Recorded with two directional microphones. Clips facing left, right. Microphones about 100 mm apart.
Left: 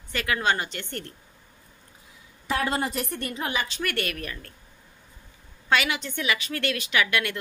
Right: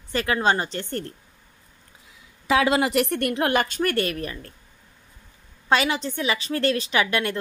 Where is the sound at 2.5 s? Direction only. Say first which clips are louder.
Right 7 dB; 90° right; by 3.8 s 55° right (ahead or behind).